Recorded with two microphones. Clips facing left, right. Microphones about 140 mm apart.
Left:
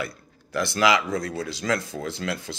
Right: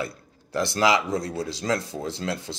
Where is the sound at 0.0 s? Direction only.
30° right (ahead or behind).